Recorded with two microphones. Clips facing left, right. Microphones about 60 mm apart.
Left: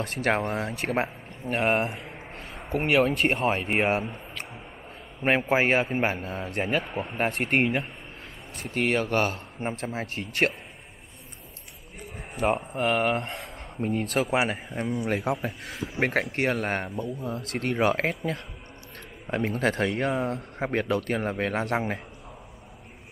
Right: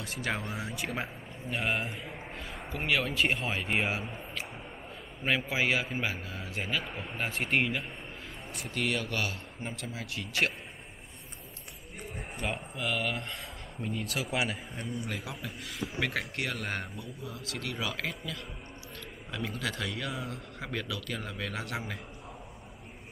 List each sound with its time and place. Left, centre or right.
0.0 s a man's voice: left
5.2 s a man's voice: left
8.5 s a man's voice: left
12.4 s a man's voice: left